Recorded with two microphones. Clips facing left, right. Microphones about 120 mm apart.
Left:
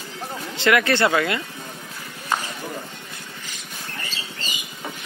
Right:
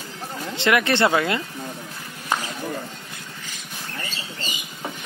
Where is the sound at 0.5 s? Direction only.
25° right (ahead or behind).